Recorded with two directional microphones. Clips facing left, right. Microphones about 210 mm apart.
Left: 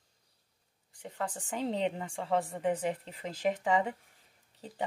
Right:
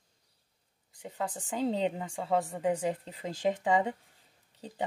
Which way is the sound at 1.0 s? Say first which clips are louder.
Right 1 dB; 10° right (ahead or behind).